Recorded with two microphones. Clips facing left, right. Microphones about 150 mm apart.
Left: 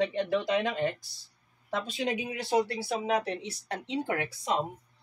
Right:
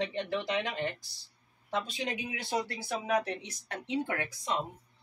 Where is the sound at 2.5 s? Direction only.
30° left (ahead or behind).